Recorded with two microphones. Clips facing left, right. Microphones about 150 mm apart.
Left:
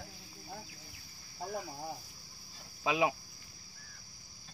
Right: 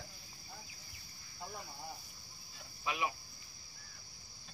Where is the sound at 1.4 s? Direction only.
55° left (ahead or behind).